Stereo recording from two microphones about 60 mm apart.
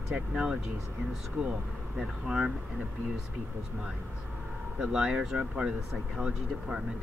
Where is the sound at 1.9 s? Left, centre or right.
Centre.